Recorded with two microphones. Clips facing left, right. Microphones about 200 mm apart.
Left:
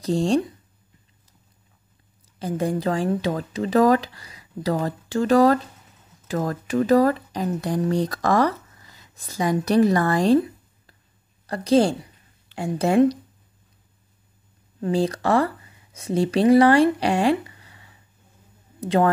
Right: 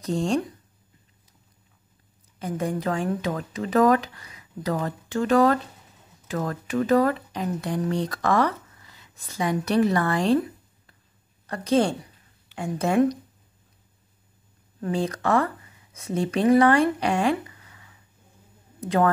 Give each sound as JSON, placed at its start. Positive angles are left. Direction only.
{"t": 0.0, "sound": "speech", "side_deg": 35}
{"t": 2.3, "sound": "speech", "side_deg": 35}
{"t": 11.4, "sound": "a woman's voice", "side_deg": 35}
{"t": 14.8, "sound": "speech", "side_deg": 35}